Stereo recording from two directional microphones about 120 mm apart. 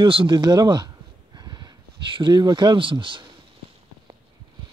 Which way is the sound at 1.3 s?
40° right (ahead or behind).